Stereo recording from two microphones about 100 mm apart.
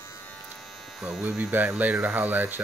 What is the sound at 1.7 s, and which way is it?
Speech, 15° right (ahead or behind).